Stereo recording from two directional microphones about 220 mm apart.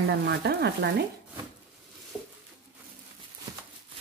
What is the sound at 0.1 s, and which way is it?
Speech, 50° right (ahead or behind).